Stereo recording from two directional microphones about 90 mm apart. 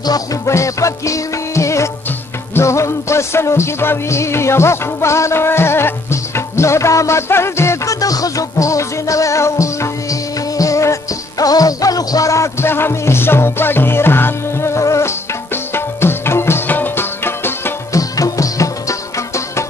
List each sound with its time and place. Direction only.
0.0 s music: 45° left (ahead or behind); by 17.7 s 25° left (ahead or behind)
17.9 s music: 40° left (ahead or behind)